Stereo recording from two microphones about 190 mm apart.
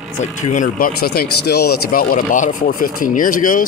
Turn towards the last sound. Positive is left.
turn(degrees=45)  # may be behind; listen again after turning